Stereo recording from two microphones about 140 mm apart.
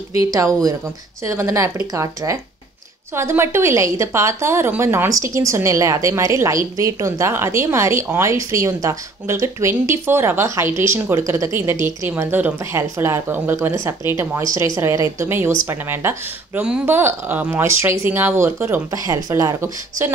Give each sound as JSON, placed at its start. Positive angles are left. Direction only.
{"t": 0.3, "sound": "speech", "side_deg": -25}